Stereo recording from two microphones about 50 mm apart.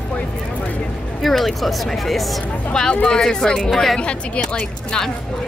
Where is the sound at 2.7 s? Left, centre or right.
Centre.